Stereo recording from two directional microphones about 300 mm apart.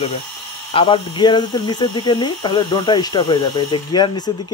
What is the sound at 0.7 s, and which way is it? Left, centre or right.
A man's voice, centre.